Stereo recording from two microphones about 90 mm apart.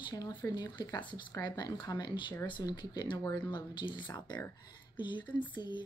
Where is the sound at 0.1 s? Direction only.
45° left (ahead or behind).